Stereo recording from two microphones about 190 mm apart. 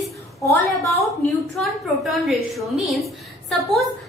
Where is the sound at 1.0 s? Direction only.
Centre (ahead or behind).